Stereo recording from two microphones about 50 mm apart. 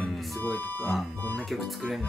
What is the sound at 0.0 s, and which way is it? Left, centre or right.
Music, left.